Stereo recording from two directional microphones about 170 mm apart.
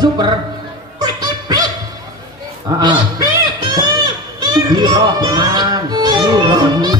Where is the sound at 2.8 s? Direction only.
25° right (ahead or behind).